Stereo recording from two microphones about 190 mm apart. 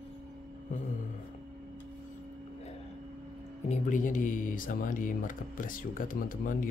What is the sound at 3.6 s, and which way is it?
Speech, 40° left (ahead or behind).